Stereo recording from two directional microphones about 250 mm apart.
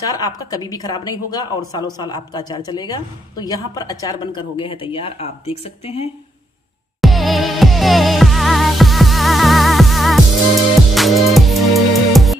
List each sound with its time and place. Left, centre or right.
0.0 s a woman's voice: centre
7.0 s music: centre